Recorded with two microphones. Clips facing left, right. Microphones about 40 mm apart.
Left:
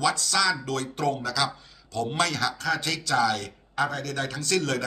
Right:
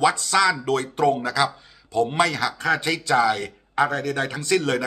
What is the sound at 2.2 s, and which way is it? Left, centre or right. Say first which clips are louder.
Speech: right 1 dB; centre.